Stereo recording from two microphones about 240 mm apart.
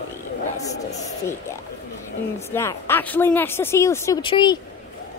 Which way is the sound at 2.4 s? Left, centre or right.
Centre.